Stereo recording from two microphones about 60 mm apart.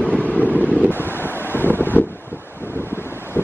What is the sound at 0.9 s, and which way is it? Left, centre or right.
Wind noise, left.